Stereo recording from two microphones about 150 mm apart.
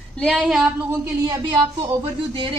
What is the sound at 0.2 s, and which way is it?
Speech, centre (ahead or behind).